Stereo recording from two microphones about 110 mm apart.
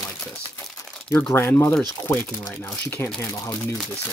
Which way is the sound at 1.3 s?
20° left (ahead or behind).